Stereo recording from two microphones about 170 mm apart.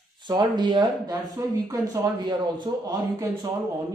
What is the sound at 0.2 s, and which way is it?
Speech, 25° right (ahead or behind).